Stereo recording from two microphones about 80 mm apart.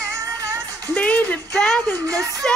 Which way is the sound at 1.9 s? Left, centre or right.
Right.